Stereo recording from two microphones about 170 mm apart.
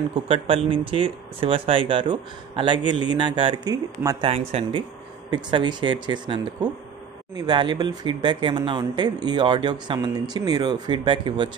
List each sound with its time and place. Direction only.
0.3 s speech: 30° right (ahead or behind)
4.3 s speech: 35° right (ahead or behind)